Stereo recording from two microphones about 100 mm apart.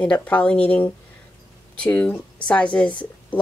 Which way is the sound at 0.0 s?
15° left (ahead or behind).